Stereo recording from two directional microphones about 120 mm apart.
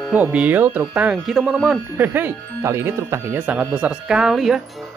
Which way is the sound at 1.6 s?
15° right (ahead or behind).